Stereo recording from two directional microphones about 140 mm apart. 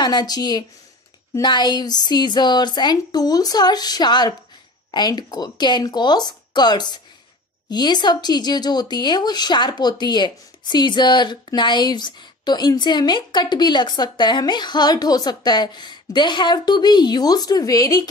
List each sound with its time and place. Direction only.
0.0 s a woman's voice: 30° left (ahead or behind)